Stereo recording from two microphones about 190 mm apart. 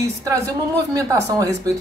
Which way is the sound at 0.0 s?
15° right (ahead or behind).